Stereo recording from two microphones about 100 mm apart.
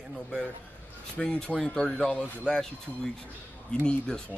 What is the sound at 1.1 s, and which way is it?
Speech, 10° left (ahead or behind).